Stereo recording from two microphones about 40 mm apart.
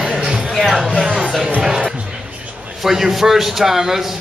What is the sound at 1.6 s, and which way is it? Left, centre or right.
Music, centre.